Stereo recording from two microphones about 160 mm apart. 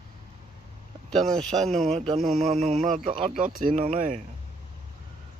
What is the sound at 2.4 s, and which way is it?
Speech, 55° right (ahead or behind).